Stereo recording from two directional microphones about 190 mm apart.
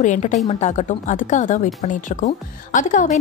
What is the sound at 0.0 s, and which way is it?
A woman's voice, 40° left (ahead or behind).